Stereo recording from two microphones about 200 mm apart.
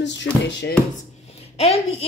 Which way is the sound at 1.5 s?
30° left (ahead or behind).